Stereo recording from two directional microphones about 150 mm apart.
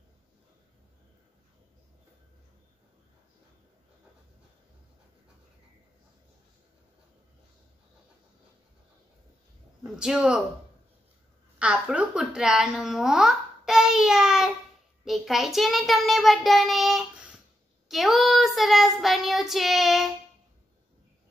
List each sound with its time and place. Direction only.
9.8 s speech: 5° right (ahead or behind)
11.5 s speech: 5° right (ahead or behind)